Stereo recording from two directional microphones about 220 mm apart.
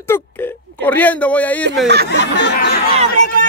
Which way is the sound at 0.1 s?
10° left (ahead or behind).